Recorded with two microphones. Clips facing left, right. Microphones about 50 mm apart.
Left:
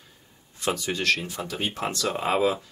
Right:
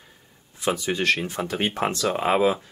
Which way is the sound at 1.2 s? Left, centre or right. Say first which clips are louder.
Right 4 dB; right.